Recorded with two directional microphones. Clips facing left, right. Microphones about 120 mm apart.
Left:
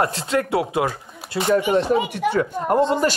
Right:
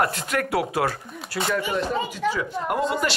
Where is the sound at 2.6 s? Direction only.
35° left (ahead or behind).